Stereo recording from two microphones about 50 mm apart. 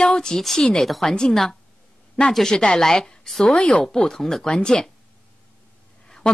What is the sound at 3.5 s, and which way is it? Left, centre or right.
Speech, left.